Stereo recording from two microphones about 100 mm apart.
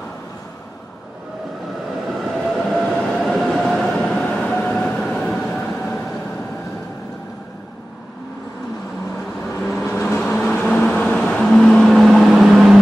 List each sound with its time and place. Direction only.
2.5 s train: centre (ahead or behind)
9.8 s vehicle: 20° left (ahead or behind)
10.3 s a sound: centre (ahead or behind)
10.7 s vehicle: 10° left (ahead or behind)